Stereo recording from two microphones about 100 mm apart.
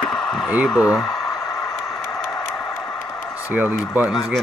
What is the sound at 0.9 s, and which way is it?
Speech, centre (ahead or behind).